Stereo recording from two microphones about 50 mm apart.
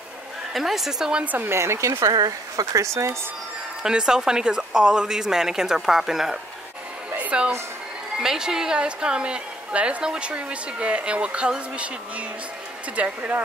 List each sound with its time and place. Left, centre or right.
0.5 s speech: centre
1.2 s speech: right
1.5 s speech: right
3.8 s speech: centre
7.2 s a woman's voice: right
8.2 s a woman's voice: centre